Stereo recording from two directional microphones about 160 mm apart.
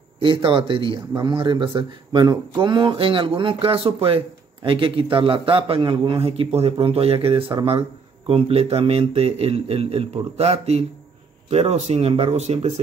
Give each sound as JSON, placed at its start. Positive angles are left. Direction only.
{"t": 0.2, "sound": "a man's voice", "side_deg": -30}